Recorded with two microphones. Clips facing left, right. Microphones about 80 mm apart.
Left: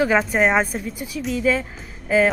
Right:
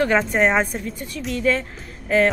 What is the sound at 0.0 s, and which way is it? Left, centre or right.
Speech, centre.